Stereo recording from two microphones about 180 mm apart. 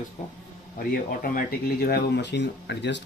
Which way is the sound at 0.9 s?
55° left (ahead or behind).